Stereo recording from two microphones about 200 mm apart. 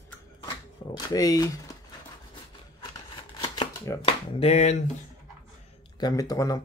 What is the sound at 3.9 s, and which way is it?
Speech, 25° left (ahead or behind).